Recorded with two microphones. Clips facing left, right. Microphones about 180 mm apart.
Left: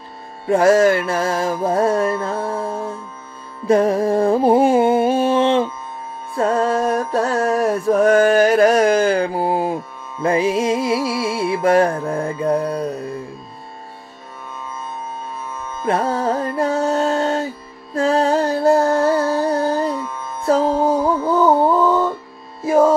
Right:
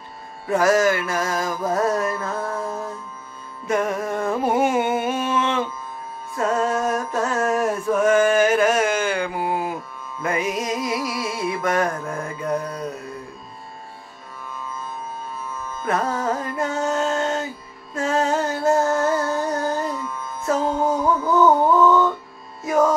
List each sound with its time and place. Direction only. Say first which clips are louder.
0.5 s music: left 5 dB; 30° left (ahead or behind)
15.8 s music: left 4 dB; 30° left (ahead or behind)